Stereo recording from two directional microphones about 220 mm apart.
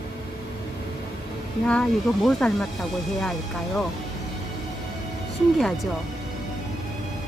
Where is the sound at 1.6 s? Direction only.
5° left (ahead or behind).